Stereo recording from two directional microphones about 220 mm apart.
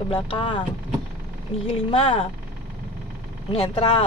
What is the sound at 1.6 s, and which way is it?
Speech, 25° left (ahead or behind).